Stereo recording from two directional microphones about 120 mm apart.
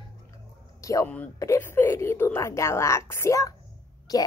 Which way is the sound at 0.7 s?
25° left (ahead or behind).